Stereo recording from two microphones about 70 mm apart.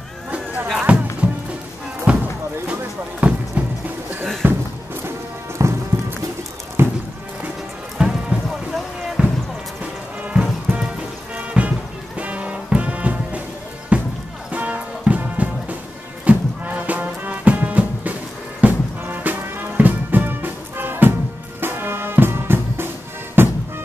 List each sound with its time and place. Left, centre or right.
0.8 s music: centre
2.1 s a sound: centre
5.6 s music: right
8.0 s music: centre
9.0 s basketball bounce: centre
10.2 s music: centre